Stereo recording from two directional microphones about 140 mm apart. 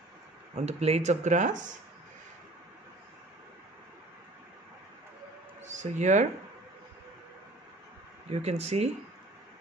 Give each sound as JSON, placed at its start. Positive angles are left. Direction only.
{"t": 0.6, "sound": "speech", "side_deg": -50}
{"t": 5.6, "sound": "speech", "side_deg": -55}
{"t": 8.3, "sound": "speech", "side_deg": -50}